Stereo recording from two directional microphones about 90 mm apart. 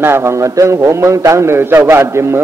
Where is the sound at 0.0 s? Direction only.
30° right (ahead or behind).